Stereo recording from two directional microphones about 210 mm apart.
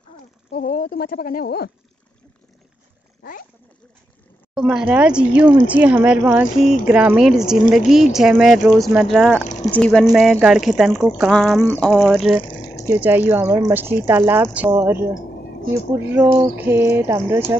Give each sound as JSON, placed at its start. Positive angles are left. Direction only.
{"t": 0.5, "sound": "speech", "side_deg": 45}
{"t": 4.6, "sound": "speech", "side_deg": -5}
{"t": 11.6, "sound": "a sound", "side_deg": 10}
{"t": 11.9, "sound": "speech", "side_deg": 0}
{"t": 12.4, "sound": "water", "side_deg": 15}
{"t": 13.3, "sound": "speech", "side_deg": -15}
{"t": 16.1, "sound": "speech", "side_deg": -10}